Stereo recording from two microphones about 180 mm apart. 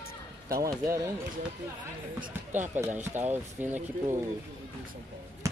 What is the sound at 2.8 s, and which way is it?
Speech, 10° right (ahead or behind).